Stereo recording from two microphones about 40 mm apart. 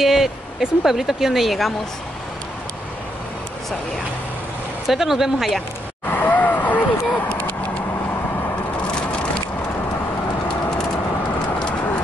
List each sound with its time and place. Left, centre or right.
0.0 s speech: centre
4.8 s speech: centre
6.0 s a sound: left